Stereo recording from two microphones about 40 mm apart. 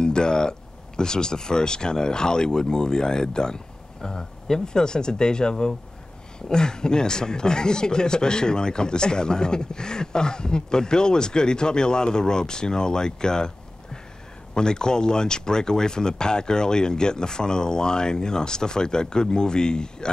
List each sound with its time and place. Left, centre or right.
0.0 s speech: centre
14.5 s speech: centre